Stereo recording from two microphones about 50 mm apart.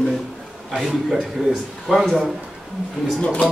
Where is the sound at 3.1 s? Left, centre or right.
Left.